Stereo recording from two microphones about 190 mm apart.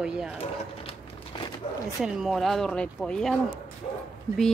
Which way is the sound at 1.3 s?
25° left (ahead or behind).